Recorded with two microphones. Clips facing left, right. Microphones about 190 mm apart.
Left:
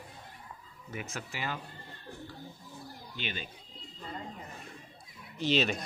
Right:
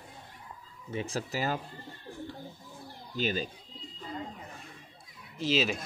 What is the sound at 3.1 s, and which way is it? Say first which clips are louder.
Speech: right 10 dB; 40° right (ahead or behind).